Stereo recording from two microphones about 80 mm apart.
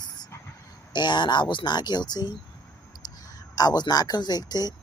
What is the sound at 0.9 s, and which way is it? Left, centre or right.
Speech, left.